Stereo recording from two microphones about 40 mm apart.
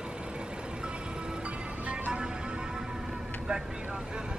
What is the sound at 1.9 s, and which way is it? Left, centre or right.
Music, right.